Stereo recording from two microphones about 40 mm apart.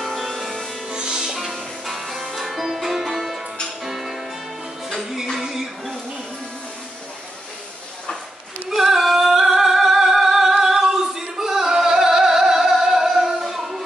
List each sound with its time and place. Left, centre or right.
0.0 s music: centre
0.9 s music: right
1.3 s music: centre
8.6 s singing: centre